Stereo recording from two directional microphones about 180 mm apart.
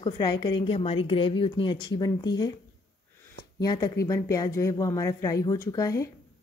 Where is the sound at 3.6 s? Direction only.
20° left (ahead or behind).